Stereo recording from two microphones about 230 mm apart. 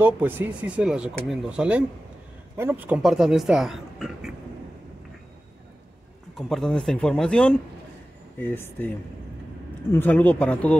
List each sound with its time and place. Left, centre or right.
0.0 s speech: centre
6.3 s speech: centre